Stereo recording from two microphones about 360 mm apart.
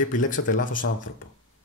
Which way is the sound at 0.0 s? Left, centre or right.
Left.